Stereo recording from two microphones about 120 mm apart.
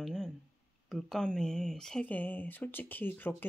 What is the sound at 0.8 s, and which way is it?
Speech, 5° left (ahead or behind).